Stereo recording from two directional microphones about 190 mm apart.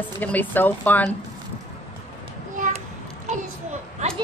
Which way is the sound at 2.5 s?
40° right (ahead or behind).